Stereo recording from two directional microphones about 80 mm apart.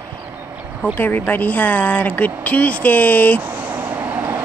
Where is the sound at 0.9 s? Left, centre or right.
Left.